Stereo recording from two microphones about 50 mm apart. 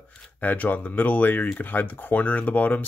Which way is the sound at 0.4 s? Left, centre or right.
Left.